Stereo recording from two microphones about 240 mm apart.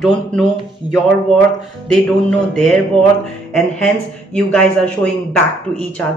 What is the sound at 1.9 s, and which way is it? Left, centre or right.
Speech, centre.